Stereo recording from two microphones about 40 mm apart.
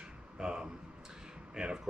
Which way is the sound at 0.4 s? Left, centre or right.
Centre.